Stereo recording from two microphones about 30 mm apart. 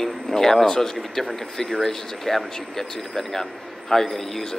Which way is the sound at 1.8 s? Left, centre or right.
Centre.